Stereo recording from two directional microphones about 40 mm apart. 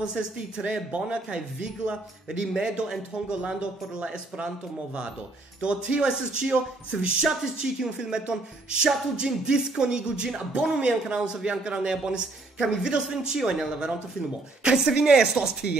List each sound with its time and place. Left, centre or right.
0.0 s a man's voice: centre
5.6 s a man's voice: right